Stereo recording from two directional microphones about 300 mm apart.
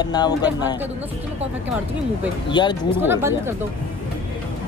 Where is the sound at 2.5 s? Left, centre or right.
Centre.